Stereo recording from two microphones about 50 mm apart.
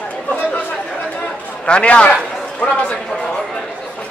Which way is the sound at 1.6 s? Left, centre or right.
Left.